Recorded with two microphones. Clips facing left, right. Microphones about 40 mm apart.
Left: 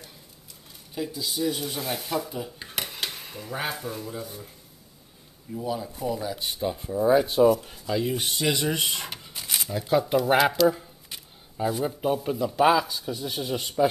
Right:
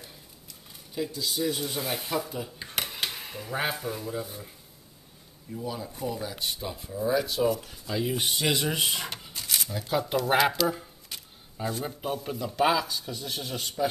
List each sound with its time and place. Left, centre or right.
0.9 s speech: centre
5.6 s speech: centre
6.9 s speech: left
7.9 s speech: centre
9.3 s a sound: centre
9.6 s speech: centre